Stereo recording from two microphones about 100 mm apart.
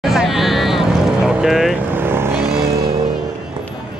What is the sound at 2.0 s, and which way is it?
Vehicle, 25° right (ahead or behind).